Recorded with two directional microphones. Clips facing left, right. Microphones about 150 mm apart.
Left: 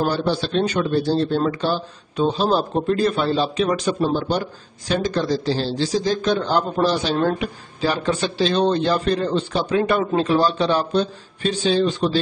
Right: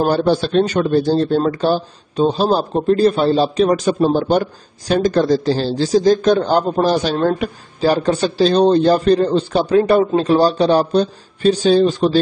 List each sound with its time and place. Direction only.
0.0 s speech: 45° right (ahead or behind)